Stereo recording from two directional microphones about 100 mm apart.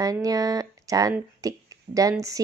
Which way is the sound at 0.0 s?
35° right (ahead or behind).